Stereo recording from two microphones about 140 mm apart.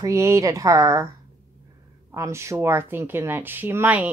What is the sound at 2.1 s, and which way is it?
Speech, 20° right (ahead or behind).